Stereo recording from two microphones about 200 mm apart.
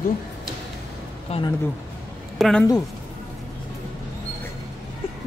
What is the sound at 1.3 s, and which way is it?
Speech, 30° left (ahead or behind).